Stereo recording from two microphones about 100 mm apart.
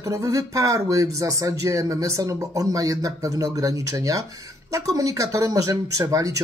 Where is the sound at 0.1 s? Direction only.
35° right (ahead or behind).